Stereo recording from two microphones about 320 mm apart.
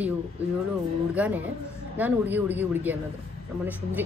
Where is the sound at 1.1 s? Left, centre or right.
Centre.